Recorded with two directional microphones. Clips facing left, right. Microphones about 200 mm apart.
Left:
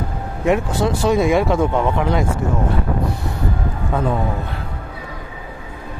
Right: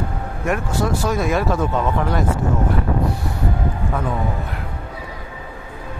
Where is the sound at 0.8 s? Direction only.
25° left (ahead or behind).